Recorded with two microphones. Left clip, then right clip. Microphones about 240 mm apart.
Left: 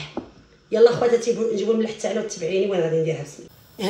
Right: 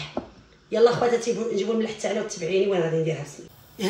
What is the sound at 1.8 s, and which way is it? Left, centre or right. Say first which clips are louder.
Speech: left 2 dB; centre.